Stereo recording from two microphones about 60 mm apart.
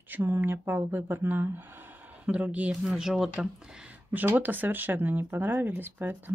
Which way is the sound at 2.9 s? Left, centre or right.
Centre.